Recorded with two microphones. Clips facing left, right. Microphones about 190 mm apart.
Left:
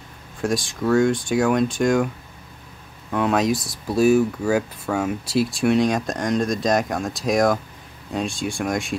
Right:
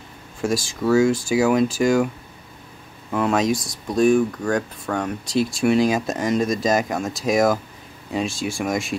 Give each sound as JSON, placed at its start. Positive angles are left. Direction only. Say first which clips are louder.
{"t": 0.4, "sound": "speech", "louder": "even", "side_deg": 0}
{"t": 3.1, "sound": "speech", "louder": "even", "side_deg": 0}